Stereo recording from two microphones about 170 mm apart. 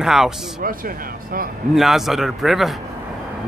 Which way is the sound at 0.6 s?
60° right (ahead or behind).